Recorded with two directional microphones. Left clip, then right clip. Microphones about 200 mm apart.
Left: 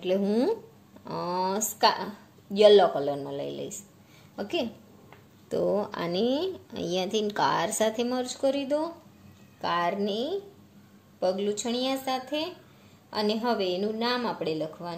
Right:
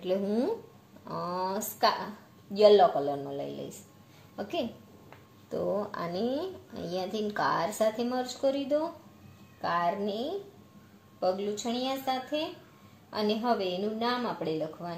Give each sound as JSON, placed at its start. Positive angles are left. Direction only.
{"t": 0.0, "sound": "speech", "side_deg": 30}